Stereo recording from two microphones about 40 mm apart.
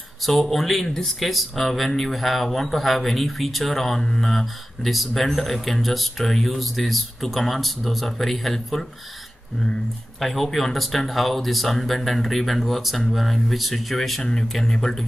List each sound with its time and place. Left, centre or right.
0.3 s speech: centre
10.2 s speech: centre